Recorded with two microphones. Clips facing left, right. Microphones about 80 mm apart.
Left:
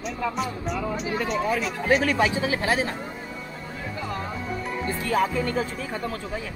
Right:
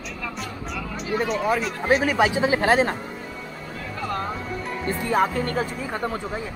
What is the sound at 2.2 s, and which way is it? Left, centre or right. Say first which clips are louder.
Speech: right 4 dB; right.